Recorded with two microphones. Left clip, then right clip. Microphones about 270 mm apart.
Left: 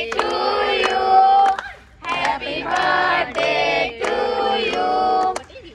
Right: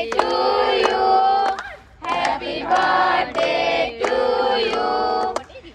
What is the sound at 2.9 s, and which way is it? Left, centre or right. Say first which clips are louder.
Music: even; right.